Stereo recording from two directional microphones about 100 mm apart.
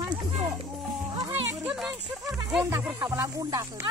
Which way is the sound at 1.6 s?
5° right (ahead or behind).